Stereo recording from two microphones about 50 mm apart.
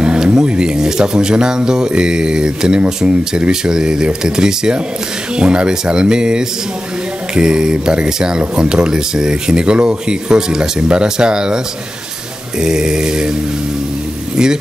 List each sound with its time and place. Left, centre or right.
0.0 s speech: right